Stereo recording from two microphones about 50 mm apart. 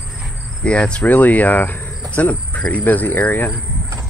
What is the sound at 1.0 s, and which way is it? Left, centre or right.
Speech, left.